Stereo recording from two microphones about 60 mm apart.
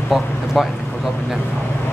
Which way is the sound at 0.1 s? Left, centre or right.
Centre.